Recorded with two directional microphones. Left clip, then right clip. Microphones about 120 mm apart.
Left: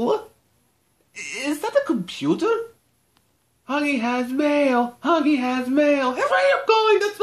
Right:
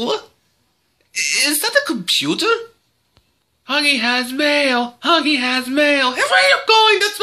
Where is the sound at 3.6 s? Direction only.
15° left (ahead or behind).